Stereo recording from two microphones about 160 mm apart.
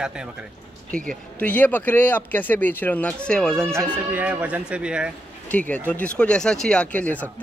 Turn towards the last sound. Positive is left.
turn(degrees=10)  # may be behind; listen again after turning